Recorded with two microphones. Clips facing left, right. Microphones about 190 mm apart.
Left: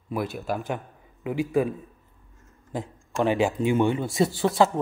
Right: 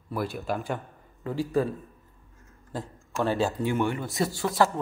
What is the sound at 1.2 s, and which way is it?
Speech, 15° left (ahead or behind).